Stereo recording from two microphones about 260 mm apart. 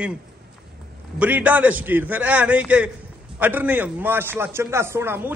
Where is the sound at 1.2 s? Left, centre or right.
Centre.